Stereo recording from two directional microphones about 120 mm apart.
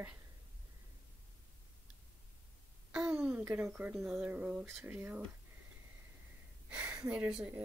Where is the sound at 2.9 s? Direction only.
10° right (ahead or behind).